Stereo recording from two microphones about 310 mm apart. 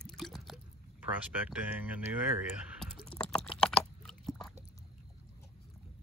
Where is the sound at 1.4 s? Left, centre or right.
Centre.